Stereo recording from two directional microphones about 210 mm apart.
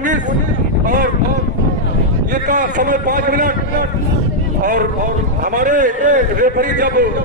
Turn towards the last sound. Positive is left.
turn(degrees=-40)  # may be behind; listen again after turning